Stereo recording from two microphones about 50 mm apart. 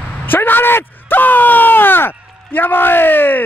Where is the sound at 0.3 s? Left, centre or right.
Left.